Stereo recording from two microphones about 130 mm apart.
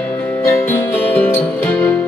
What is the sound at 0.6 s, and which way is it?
Music, 15° left (ahead or behind).